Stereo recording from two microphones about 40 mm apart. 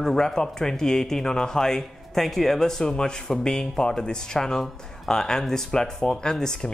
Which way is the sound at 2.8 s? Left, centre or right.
Centre.